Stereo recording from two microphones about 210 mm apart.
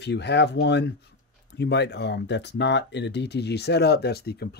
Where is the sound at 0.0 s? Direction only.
55° left (ahead or behind).